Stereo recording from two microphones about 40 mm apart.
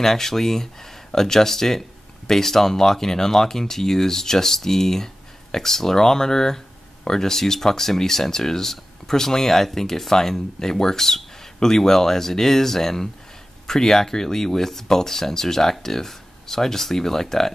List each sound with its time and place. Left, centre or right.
0.0 s speech: centre